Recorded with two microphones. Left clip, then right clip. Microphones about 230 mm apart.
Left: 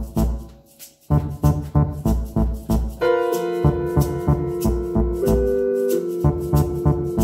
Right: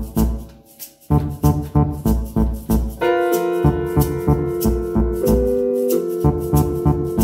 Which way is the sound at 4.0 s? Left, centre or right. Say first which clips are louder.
Right 3 dB; left.